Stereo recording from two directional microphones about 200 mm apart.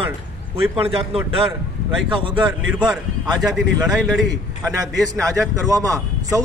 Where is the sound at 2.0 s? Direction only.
25° right (ahead or behind).